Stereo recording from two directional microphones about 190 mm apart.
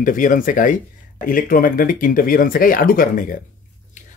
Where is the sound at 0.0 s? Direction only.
45° left (ahead or behind).